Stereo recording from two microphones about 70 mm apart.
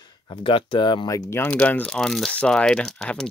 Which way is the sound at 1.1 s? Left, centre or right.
Left.